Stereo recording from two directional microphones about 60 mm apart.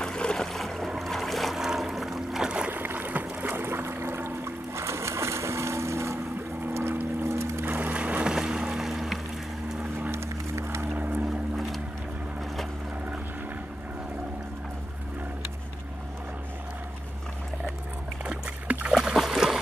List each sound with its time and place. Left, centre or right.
0.0 s boat: centre
2.7 s a sound: right
6.7 s boat: right
7.6 s music: right
8.3 s boat: centre
10.1 s music: right
11.0 s boat: right
11.2 s boat: centre
18.2 s splash: right
18.9 s a sound: centre